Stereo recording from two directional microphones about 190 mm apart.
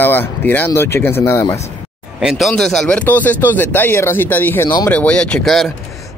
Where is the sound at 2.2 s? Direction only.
Centre (ahead or behind).